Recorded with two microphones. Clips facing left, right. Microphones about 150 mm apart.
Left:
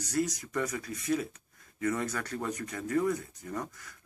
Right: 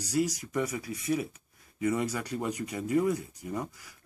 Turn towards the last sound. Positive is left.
turn(degrees=-10)  # may be behind; listen again after turning